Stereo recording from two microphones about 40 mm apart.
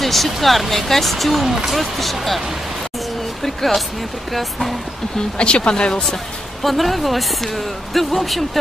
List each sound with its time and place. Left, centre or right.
0.0 s speech: centre
3.4 s speech: centre
5.4 s speech: left
6.6 s speech: centre